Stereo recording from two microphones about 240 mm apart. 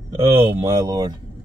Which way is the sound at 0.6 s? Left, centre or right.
Centre.